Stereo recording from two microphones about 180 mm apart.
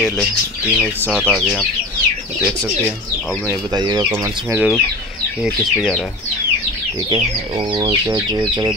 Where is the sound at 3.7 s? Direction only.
25° right (ahead or behind).